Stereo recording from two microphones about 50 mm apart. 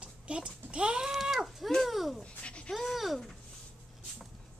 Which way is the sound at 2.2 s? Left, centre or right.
Left.